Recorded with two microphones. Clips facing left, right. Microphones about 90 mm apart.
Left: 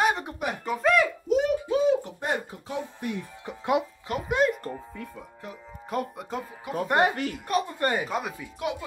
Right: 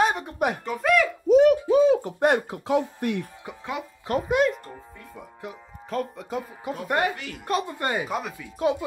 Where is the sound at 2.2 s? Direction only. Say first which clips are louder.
Right 8 dB; 80° right.